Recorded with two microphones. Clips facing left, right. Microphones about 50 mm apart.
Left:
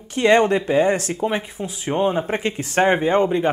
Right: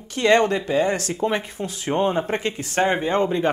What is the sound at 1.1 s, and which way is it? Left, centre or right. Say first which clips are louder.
Speech: even; centre.